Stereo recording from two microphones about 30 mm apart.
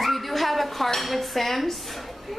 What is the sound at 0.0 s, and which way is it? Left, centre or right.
Dishes, centre.